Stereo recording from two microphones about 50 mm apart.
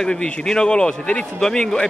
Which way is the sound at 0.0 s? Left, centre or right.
Centre.